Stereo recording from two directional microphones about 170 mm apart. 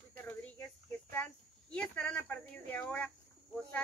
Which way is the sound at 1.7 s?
5° left (ahead or behind).